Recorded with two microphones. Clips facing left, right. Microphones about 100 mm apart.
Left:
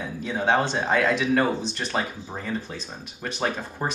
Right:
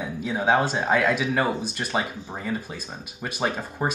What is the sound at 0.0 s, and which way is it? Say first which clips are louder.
Speech: right 1 dB; 10° right (ahead or behind).